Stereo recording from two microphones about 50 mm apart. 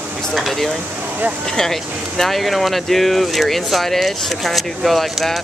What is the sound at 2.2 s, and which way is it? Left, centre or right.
Speech, centre.